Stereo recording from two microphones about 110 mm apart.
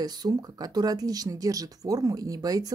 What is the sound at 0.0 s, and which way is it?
Speech, 35° right (ahead or behind).